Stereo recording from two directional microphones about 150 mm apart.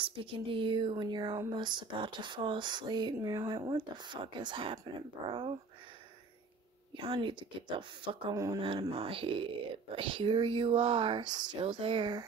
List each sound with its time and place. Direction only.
0.0 s speech: 35° right (ahead or behind); by 3.6 s 20° right (ahead or behind)
3.6 s speech: 30° right (ahead or behind)
7.0 s speech: 35° right (ahead or behind)